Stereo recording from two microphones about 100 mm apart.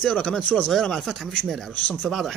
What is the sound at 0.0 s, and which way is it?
Speech, 5° left (ahead or behind).